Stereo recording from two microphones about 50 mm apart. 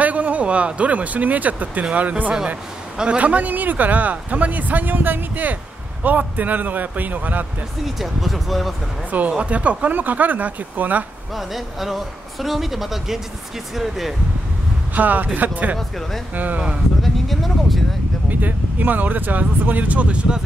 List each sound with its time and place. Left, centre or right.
0.0 s speech: right
7.8 s speech: centre
9.4 s speech: right
11.3 s speech: centre
15.0 s speech: right
17.0 s a sound: centre
18.3 s speech: right